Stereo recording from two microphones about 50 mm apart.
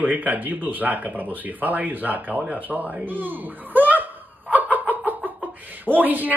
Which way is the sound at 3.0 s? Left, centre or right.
Right.